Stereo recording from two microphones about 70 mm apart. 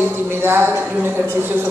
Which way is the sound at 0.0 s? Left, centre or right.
Right.